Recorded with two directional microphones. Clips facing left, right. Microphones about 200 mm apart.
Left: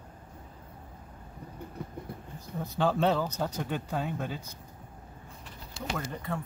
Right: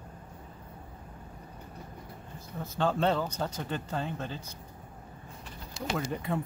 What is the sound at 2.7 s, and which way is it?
Speech, 10° left (ahead or behind).